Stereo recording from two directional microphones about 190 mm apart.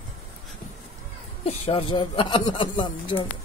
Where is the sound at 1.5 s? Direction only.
30° left (ahead or behind).